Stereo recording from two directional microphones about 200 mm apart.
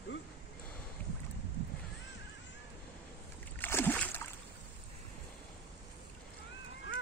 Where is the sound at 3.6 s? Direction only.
10° left (ahead or behind).